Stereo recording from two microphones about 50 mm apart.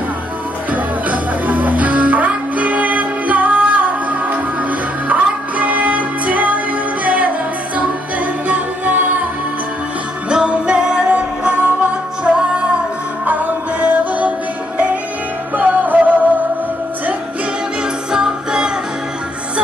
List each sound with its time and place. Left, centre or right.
0.7 s music: right
8.5 s music: right
10.3 s music: centre
15.5 s music: right
18.1 s music: centre